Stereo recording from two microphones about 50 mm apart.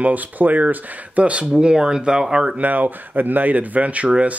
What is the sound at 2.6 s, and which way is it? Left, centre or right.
Speech, right.